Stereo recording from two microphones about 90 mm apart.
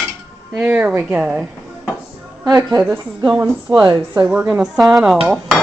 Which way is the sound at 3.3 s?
10° right (ahead or behind).